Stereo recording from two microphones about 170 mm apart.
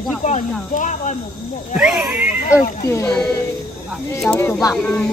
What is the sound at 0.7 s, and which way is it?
Speech, 45° left (ahead or behind).